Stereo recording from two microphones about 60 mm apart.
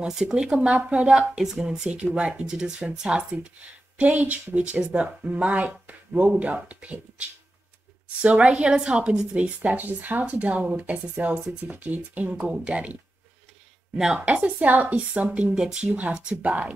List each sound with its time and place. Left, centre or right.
0.0 s speech: centre
4.0 s speech: right
9.3 s speech: right
13.9 s speech: centre
14.2 s speech: right